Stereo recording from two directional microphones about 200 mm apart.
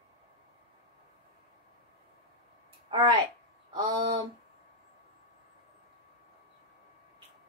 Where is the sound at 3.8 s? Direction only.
25° right (ahead or behind).